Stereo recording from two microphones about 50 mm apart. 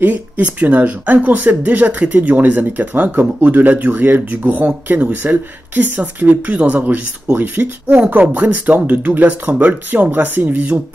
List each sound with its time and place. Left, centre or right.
0.0 s speech: right